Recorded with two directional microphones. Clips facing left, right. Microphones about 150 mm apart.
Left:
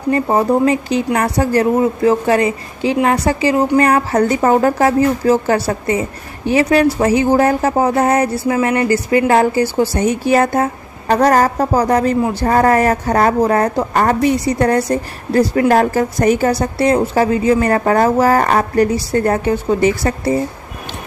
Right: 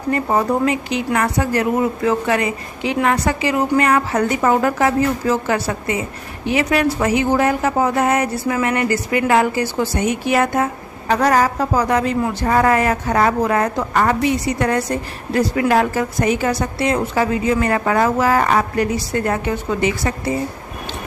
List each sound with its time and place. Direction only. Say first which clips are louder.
0.1 s a woman's voice: left 4 dB; 25° left (ahead or behind)